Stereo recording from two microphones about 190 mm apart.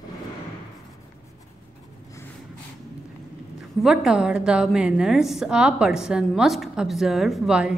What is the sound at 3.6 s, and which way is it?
A woman's voice, centre (ahead or behind).